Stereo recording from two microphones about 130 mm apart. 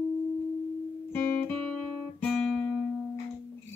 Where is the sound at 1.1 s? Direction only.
15° left (ahead or behind).